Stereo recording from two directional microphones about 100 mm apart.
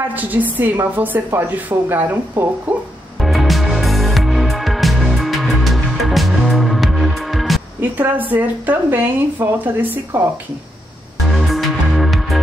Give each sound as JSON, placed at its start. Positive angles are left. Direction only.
{"t": 0.1, "sound": "a woman's voice", "side_deg": -15}
{"t": 3.2, "sound": "music", "side_deg": 0}
{"t": 8.0, "sound": "speech", "side_deg": -20}
{"t": 11.3, "sound": "music", "side_deg": 0}